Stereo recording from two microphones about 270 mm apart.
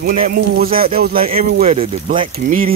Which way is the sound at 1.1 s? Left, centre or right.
Right.